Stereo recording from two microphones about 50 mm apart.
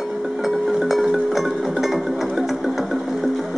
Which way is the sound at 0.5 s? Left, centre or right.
Centre.